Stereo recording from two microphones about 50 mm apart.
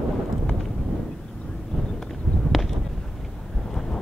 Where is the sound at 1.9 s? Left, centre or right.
Centre.